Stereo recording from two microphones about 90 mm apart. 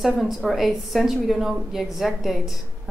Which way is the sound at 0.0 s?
Centre (ahead or behind).